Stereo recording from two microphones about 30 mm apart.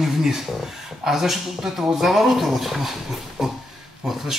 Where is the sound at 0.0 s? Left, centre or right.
Centre.